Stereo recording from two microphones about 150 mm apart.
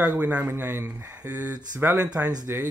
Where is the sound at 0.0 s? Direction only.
10° right (ahead or behind).